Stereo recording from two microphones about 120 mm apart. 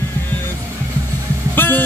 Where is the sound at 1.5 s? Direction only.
15° left (ahead or behind).